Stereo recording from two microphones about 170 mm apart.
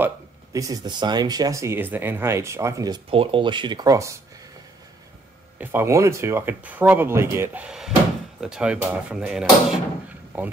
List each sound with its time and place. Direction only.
0.0 s speech: 20° right (ahead or behind)
3.1 s speech: 30° right (ahead or behind)
5.6 s speech: 10° right (ahead or behind)